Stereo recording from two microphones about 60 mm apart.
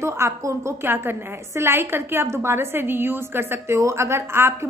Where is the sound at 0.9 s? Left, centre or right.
Right.